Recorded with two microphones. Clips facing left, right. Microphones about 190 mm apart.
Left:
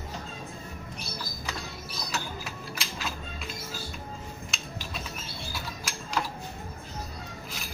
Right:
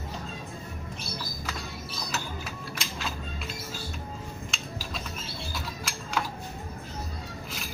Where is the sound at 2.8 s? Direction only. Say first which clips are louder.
Right 1 dB; centre (ahead or behind).